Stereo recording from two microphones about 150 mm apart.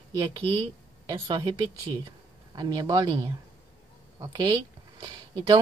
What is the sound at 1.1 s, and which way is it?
A woman's voice, 25° right (ahead or behind).